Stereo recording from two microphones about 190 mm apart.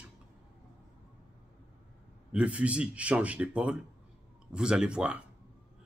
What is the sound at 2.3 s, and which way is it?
Speech, 5° right (ahead or behind).